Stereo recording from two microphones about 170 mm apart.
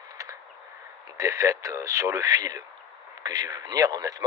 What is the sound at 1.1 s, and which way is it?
Speech, 20° right (ahead or behind).